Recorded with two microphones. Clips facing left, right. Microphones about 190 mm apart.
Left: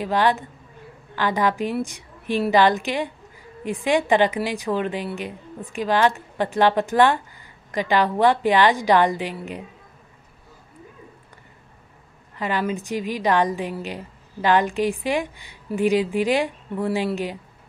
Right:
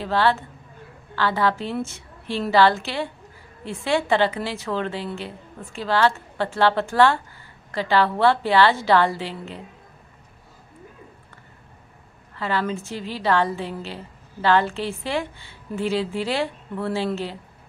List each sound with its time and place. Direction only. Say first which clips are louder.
0.0 s a woman's voice: left 1 dB; 15° left (ahead or behind)
12.4 s a woman's voice: left 1 dB; 15° left (ahead or behind)